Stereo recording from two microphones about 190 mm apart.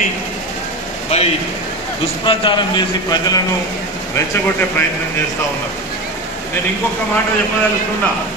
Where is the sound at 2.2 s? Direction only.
25° left (ahead or behind).